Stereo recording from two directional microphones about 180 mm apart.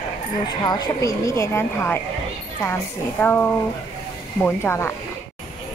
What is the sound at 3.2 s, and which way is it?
Speech, 10° left (ahead or behind).